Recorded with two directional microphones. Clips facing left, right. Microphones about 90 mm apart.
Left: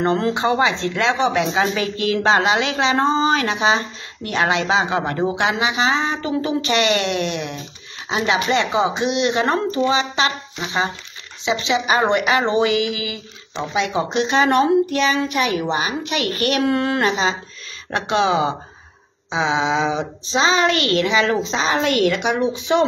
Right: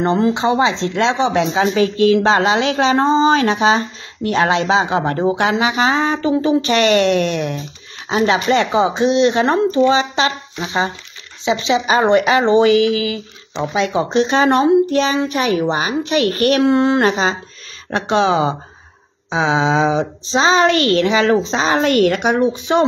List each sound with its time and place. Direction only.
0.0 s speech: 20° right (ahead or behind); by 16.6 s 40° right (ahead or behind)
16.6 s speech: 25° right (ahead or behind)
17.0 s speech: 40° right (ahead or behind)